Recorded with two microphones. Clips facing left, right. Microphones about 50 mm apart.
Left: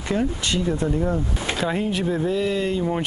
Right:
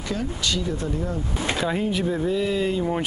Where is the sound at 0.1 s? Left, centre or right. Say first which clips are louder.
Left 4 dB; left.